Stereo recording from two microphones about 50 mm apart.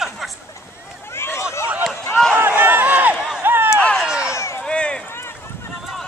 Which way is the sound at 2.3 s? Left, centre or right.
Right.